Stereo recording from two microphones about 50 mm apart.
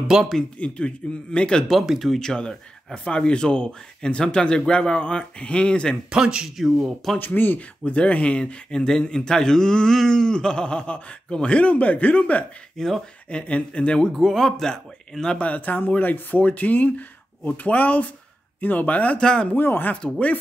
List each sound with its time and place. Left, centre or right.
0.4 s speech: left
1.7 s speech: centre
2.1 s speech: centre
6.1 s speech: centre
7.2 s speech: left
7.8 s speech: left
8.7 s a man's voice: centre; by 12.4 s left
12.7 s speech: centre
13.3 s speech: left
14.0 s a man's voice: centre
15.4 s speech: left
19.1 s a man's voice: centre
19.5 s speech: left